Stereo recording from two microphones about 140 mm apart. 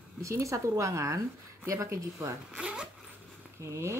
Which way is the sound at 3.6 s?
20° right (ahead or behind).